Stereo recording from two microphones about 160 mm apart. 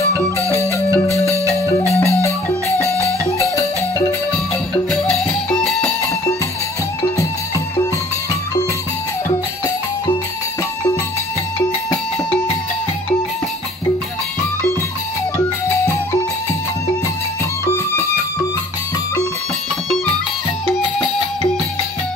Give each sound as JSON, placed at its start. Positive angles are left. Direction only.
{"t": 0.5, "sound": "music", "side_deg": 15}
{"t": 3.3, "sound": "music", "side_deg": 15}
{"t": 5.2, "sound": "music", "side_deg": 5}